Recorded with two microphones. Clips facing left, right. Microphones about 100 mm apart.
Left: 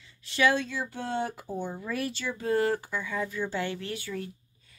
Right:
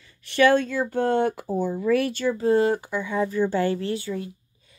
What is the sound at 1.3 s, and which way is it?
Speech, 85° right.